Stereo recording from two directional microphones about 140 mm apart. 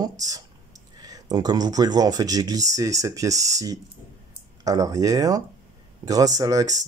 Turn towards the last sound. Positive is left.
turn(degrees=-25)  # may be behind; listen again after turning